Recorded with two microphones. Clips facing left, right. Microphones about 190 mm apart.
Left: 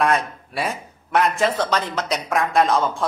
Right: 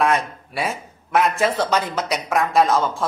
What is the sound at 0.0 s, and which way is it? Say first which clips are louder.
Speech: even; centre (ahead or behind).